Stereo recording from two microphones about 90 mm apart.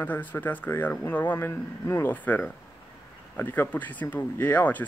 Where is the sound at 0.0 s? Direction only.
20° left (ahead or behind).